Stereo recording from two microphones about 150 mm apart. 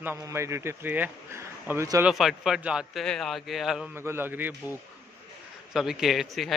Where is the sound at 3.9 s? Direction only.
15° right (ahead or behind).